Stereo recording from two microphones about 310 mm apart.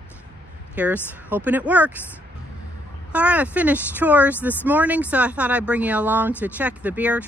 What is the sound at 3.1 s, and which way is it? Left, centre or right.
Speech, centre.